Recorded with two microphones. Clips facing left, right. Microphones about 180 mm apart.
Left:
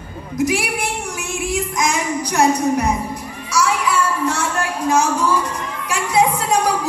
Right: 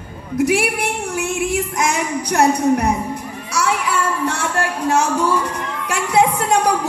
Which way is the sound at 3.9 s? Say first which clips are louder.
Left 1 dB; 65° right (ahead or behind).